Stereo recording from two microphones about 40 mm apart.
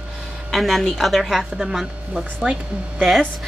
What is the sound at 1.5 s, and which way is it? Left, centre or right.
Speech, centre.